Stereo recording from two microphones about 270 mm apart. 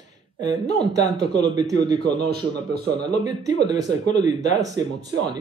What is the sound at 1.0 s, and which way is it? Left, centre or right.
Speech, centre.